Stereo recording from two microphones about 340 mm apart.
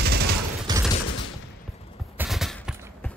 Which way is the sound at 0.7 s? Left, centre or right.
Centre.